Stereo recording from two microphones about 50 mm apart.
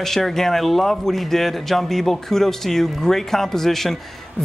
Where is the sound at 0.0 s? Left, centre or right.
Centre.